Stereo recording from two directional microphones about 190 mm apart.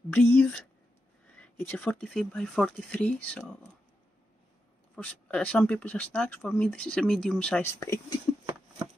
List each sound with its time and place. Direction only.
0.1 s speech: 5° left (ahead or behind)
4.9 s speech: 5° left (ahead or behind)
7.7 s speech: 15° left (ahead or behind)